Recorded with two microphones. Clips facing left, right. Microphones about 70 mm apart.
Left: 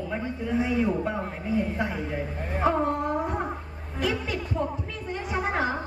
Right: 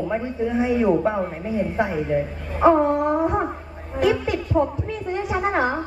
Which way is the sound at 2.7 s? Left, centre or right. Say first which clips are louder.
Right 7 dB; right.